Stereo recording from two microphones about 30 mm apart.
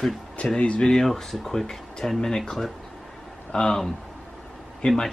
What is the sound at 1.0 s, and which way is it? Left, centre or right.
Speech, centre.